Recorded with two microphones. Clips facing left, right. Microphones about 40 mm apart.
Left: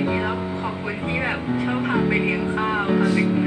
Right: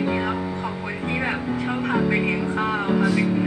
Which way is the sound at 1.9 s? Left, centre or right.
Left.